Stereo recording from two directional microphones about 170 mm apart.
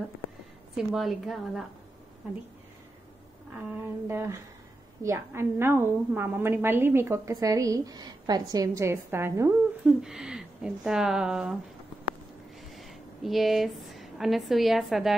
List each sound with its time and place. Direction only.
0.7 s speech: centre (ahead or behind)
3.7 s a woman's voice: 15° right (ahead or behind)
9.8 s speech: 5° right (ahead or behind)
12.7 s a woman's voice: centre (ahead or behind)